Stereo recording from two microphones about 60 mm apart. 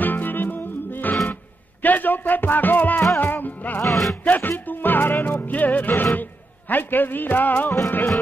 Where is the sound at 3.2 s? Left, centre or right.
Left.